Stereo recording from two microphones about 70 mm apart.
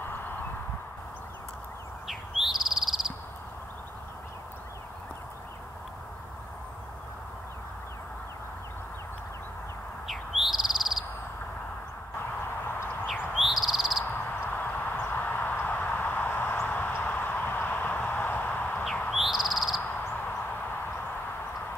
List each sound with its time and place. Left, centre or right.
2.0 s bird: centre
10.0 s bird: centre
13.4 s bird: centre
14.0 s a sound: left
19.0 s bird: centre